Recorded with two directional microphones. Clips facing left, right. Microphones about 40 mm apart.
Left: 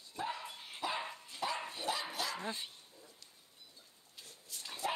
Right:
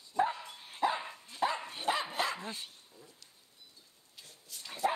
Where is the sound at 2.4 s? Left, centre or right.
Centre.